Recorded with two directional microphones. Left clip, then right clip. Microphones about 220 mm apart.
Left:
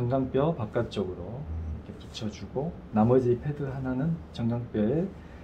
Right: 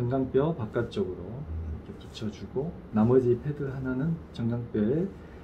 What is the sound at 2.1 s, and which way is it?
Speech, 25° left (ahead or behind).